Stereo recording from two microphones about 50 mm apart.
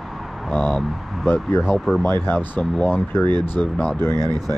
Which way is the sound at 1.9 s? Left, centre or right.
Centre.